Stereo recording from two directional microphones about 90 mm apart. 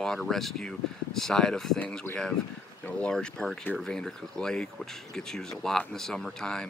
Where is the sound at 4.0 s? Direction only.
10° left (ahead or behind).